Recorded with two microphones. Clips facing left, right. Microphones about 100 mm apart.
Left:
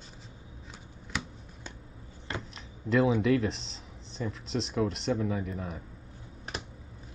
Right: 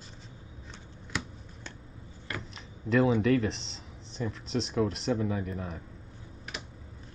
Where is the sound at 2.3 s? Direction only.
25° left (ahead or behind).